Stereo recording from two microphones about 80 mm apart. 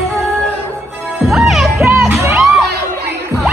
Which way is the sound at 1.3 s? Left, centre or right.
Centre.